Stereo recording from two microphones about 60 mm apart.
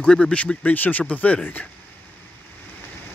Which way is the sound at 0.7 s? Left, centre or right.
Left.